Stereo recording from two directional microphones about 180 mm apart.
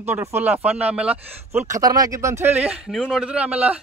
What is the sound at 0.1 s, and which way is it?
Speech, 10° right (ahead or behind).